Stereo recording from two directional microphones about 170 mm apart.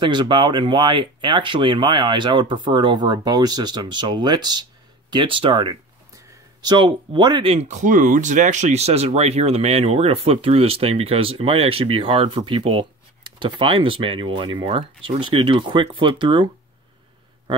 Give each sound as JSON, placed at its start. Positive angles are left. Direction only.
{"t": 0.0, "sound": "speech", "side_deg": -25}